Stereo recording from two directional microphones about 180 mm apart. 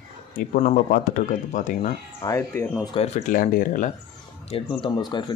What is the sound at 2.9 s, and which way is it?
Speech, 35° left (ahead or behind).